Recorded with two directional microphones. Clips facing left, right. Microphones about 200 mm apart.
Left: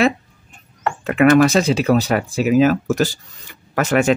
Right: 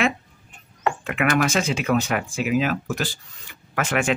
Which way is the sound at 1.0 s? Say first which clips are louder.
Left 11 dB; 40° left (ahead or behind).